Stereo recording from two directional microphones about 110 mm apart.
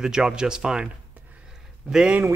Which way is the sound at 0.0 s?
5° right (ahead or behind).